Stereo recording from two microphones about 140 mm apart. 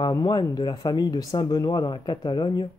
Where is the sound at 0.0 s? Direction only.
30° left (ahead or behind).